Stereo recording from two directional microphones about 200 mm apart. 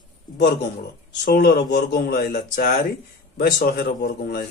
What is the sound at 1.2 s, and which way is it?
Speech, 55° left (ahead or behind).